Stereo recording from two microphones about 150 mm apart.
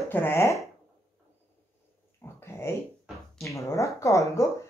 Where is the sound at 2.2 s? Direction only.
20° left (ahead or behind).